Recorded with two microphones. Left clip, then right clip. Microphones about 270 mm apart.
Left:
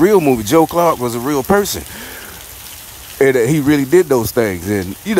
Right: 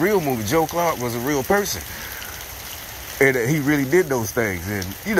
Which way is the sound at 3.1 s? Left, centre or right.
Left.